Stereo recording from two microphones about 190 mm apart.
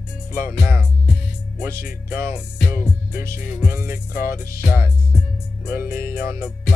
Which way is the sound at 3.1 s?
50° left (ahead or behind).